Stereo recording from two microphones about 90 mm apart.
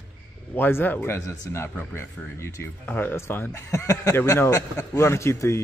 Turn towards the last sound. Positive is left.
turn(degrees=30)  # may be behind; listen again after turning